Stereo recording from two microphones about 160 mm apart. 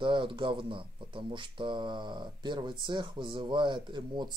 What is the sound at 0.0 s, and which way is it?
Speech, 30° right (ahead or behind).